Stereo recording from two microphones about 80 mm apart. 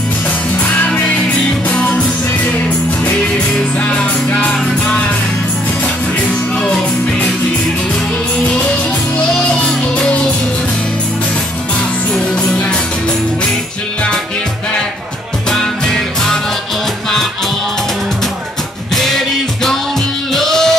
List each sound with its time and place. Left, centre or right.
1.7 s music: centre
3.8 s music: centre
9.5 s music: centre
15.5 s music: centre
19.0 s music: centre